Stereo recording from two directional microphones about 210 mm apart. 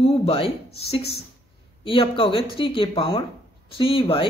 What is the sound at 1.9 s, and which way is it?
Speech, 25° left (ahead or behind).